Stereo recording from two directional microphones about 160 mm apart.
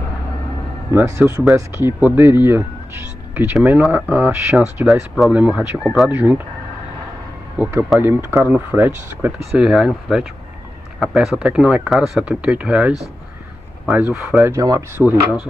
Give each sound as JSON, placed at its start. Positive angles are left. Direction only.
{"t": 0.9, "sound": "speech", "side_deg": -15}
{"t": 7.5, "sound": "speech", "side_deg": -10}
{"t": 14.4, "sound": "speech", "side_deg": -20}